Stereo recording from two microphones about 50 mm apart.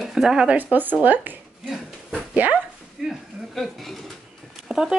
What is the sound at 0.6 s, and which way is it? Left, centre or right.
Speech, right.